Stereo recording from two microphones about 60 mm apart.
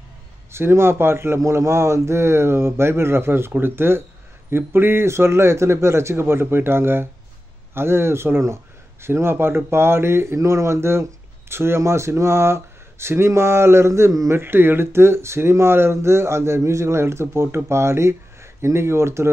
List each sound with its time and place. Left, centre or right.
0.5 s speech: right
1.4 s a man's voice: right
14.3 s speech: right